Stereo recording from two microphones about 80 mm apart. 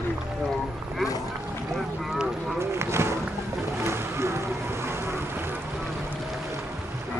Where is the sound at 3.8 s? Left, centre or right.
Right.